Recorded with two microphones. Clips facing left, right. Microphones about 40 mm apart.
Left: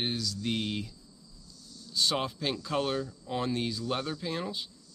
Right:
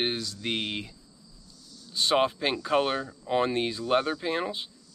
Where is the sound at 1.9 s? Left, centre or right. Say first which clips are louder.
Right 6 dB; right.